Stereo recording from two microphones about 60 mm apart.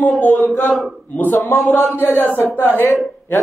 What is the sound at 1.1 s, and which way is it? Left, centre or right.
Speech, left.